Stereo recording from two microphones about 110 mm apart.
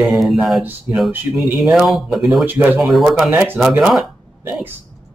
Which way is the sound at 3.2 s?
15° right (ahead or behind).